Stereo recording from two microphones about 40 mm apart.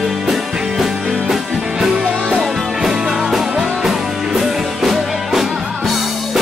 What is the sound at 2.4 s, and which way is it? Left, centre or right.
Music, centre.